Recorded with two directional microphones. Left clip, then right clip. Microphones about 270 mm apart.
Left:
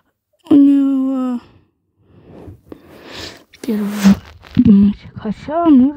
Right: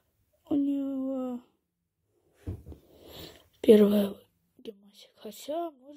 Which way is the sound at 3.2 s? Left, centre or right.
Left.